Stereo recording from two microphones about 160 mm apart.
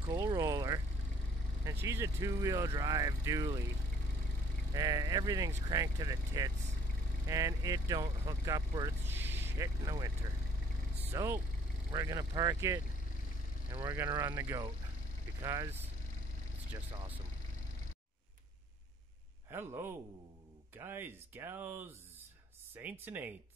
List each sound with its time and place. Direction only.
0.1 s speech: 25° right (ahead or behind)
4.7 s speech: 25° right (ahead or behind)
9.0 s vehicle: 15° right (ahead or behind)
9.8 s speech: 25° right (ahead or behind)
13.7 s speech: 35° right (ahead or behind)
13.9 s speech: 15° right (ahead or behind)
19.5 s speech: 15° right (ahead or behind)